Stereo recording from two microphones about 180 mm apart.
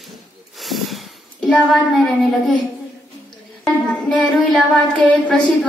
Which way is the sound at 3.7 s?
5° left (ahead or behind).